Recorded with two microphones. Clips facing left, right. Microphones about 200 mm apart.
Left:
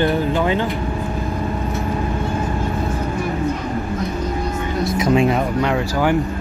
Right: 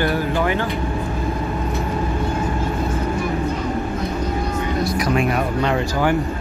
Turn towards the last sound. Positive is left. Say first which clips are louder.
# left 3 dB
turn(degrees=25)  # may be behind; listen again after turning